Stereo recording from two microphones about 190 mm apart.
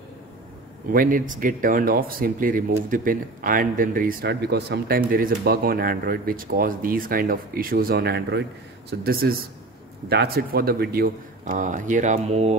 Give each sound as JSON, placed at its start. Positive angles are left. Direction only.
{"t": 0.9, "sound": "speech", "side_deg": -45}